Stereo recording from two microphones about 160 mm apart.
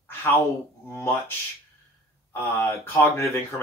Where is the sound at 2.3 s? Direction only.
15° left (ahead or behind).